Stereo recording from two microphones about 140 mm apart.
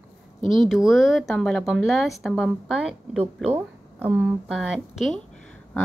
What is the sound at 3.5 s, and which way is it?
A woman's voice, 15° right (ahead or behind).